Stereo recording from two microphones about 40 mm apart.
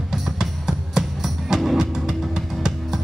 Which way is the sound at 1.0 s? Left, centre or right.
Centre.